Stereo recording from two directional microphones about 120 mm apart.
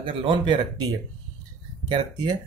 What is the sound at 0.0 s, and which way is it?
Speech, 45° right (ahead or behind).